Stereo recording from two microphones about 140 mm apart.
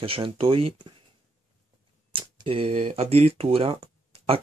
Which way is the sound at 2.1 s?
35° right (ahead or behind).